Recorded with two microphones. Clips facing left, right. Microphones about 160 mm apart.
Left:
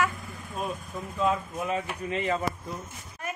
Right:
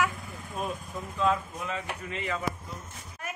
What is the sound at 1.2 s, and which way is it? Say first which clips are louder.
Speech: left 1 dB; 15° left (ahead or behind).